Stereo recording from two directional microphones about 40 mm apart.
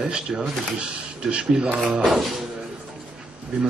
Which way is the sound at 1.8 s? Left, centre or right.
Centre.